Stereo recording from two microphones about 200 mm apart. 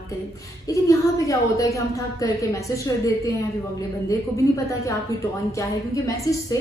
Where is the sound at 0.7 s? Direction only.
15° left (ahead or behind).